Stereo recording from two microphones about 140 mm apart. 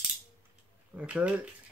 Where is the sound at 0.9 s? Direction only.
10° right (ahead or behind).